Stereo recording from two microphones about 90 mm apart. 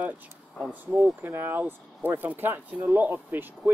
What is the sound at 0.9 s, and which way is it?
Speech, 30° right (ahead or behind).